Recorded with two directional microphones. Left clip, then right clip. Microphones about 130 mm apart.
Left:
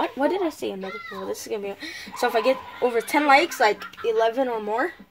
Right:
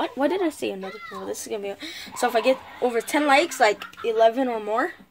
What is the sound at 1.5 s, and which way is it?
A woman's voice, 10° right (ahead or behind).